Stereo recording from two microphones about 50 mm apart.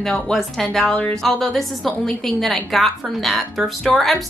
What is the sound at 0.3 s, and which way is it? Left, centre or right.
A woman's voice, centre.